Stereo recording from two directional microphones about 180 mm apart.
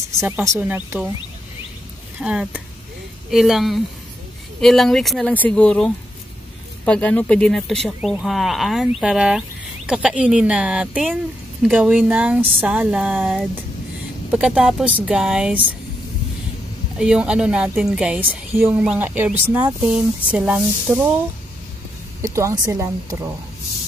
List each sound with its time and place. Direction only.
0.2 s speech: 15° right (ahead or behind)
2.1 s a woman's voice: 5° right (ahead or behind)
14.3 s a woman's voice: 5° right (ahead or behind)
17.0 s a woman's voice: 5° right (ahead or behind)
22.2 s speech: 15° right (ahead or behind)